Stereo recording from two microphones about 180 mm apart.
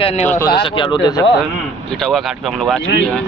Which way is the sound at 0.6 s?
25° left (ahead or behind).